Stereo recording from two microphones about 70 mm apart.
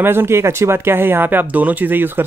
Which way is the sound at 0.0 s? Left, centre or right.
Right.